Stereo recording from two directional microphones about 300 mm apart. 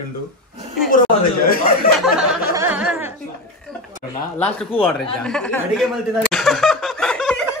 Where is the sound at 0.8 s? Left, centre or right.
Left.